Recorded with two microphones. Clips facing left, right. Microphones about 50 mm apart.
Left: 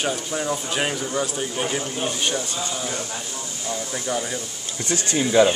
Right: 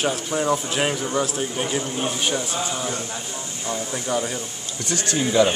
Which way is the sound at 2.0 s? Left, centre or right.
Centre.